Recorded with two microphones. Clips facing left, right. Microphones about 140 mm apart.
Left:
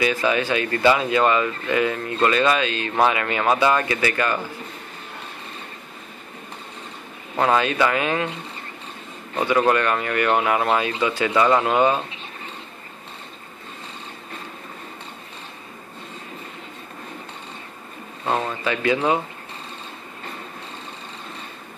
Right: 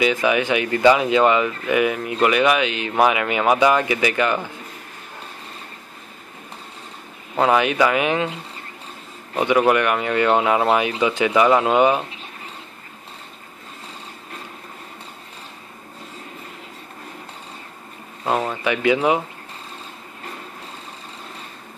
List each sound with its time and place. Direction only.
0.0 s speech: 15° right (ahead or behind)
7.3 s speech: 15° right (ahead or behind)
9.4 s speech: 15° right (ahead or behind)
18.2 s speech: 15° right (ahead or behind)